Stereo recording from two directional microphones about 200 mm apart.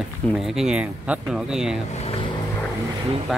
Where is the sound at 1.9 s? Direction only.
30° left (ahead or behind).